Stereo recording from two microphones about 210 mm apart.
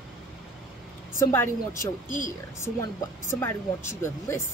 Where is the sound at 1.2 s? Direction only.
15° left (ahead or behind).